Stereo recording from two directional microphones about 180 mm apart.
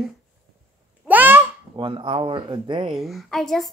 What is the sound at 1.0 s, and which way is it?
Honk, 10° right (ahead or behind).